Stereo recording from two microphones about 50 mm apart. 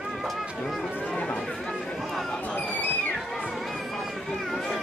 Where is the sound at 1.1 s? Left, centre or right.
Left.